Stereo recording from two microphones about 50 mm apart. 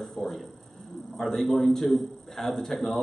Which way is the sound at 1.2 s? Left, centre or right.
Centre.